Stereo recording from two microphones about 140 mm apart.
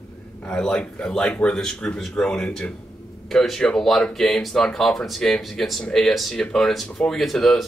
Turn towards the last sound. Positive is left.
turn(degrees=0)  # may be behind; listen again after turning